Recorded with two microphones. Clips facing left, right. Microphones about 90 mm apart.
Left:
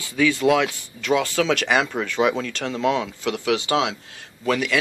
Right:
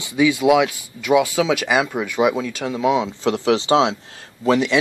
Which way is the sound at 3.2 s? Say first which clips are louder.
Right 5 dB; 30° right (ahead or behind).